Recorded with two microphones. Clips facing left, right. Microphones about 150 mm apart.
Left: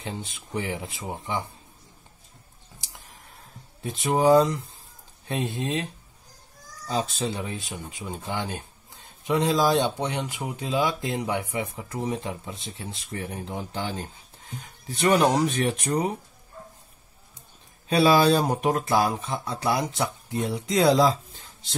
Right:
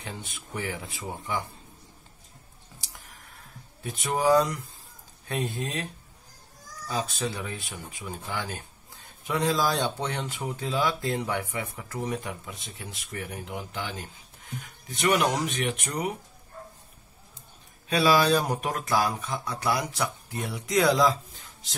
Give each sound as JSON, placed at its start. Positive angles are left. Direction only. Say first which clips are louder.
{"t": 0.0, "sound": "speech", "louder": "left 4 dB", "side_deg": 25}
{"t": 2.8, "sound": "a sound", "louder": "left 1 dB", "side_deg": 25}
{"t": 5.3, "sound": "speech", "louder": "left 3 dB", "side_deg": 20}
{"t": 6.9, "sound": "speech", "louder": "left 3 dB", "side_deg": 25}
{"t": 17.8, "sound": "speech", "louder": "left 3 dB", "side_deg": 30}